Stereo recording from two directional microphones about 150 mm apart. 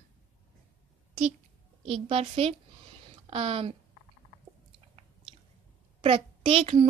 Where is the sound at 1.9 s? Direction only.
40° right (ahead or behind).